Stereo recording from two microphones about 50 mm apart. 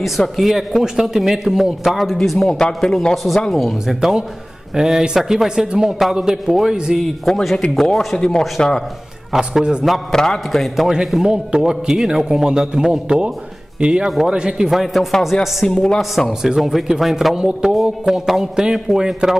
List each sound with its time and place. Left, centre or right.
0.4 s a man's voice: centre
3.8 s a man's voice: centre
7.3 s a man's voice: centre
7.7 s a man's voice: centre
9.3 s a man's voice: centre
10.1 s a man's voice: centre
11.2 s a man's voice: centre
14.7 s a man's voice: centre
15.6 s a man's voice: centre
16.0 s a man's voice: centre
17.4 s a man's voice: centre